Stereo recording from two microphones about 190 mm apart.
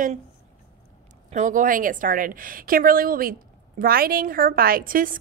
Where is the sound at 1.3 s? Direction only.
40° right (ahead or behind).